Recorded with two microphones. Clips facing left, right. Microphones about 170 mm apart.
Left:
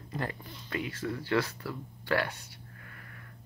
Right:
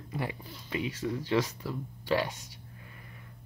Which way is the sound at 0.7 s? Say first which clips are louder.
Right 2 dB; 15° right (ahead or behind).